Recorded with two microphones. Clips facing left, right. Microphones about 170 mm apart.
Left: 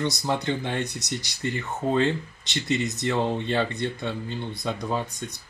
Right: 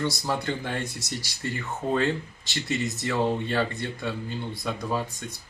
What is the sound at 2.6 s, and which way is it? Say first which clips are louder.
Speech: left 3 dB; 20° left (ahead or behind).